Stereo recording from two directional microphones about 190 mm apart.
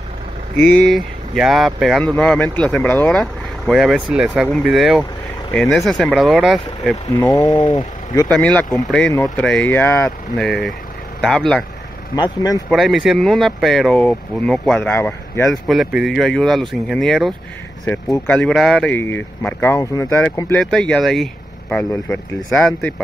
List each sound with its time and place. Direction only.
0.8 s speech: centre (ahead or behind)
7.2 s speech: 20° left (ahead or behind)
8.3 s speech: 5° left (ahead or behind)
10.3 s speech: 5° left (ahead or behind)
12.6 s speech: centre (ahead or behind)